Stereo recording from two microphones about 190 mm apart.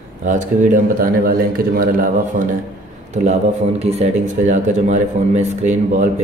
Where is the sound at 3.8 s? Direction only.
35° right (ahead or behind).